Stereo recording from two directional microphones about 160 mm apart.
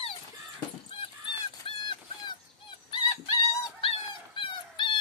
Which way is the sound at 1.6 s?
30° left (ahead or behind).